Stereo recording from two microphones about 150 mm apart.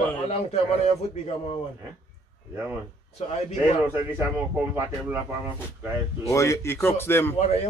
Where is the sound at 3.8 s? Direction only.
15° right (ahead or behind).